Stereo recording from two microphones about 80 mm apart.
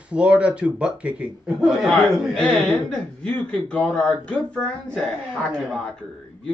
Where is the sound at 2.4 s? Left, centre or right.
Centre.